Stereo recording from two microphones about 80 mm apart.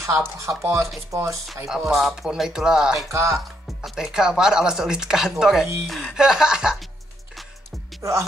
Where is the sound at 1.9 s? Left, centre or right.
Centre.